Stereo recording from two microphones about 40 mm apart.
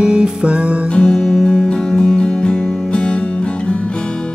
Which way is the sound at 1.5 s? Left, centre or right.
Left.